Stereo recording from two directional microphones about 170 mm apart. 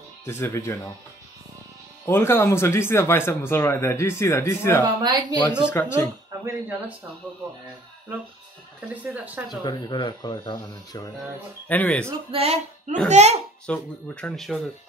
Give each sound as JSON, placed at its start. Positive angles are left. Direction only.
{"t": 0.3, "sound": "speech", "side_deg": 15}
{"t": 2.0, "sound": "speech", "side_deg": 15}
{"t": 4.8, "sound": "speech", "side_deg": -25}
{"t": 5.7, "sound": "speech", "side_deg": 15}
{"t": 6.4, "sound": "speech", "side_deg": -10}
{"t": 9.0, "sound": "speech", "side_deg": -10}
{"t": 9.6, "sound": "speech", "side_deg": 25}
{"t": 11.6, "sound": "speech", "side_deg": 10}
{"t": 12.3, "sound": "speech", "side_deg": -35}
{"t": 13.7, "sound": "speech", "side_deg": 5}